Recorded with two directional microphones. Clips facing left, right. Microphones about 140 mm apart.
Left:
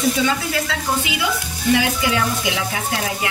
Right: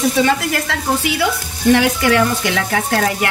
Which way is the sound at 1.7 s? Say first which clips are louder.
Right 5 dB; 65° right (ahead or behind).